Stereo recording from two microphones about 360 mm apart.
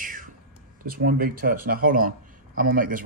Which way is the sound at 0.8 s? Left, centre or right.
Right.